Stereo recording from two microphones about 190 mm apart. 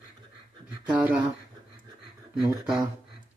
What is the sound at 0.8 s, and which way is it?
Speech, 5° right (ahead or behind).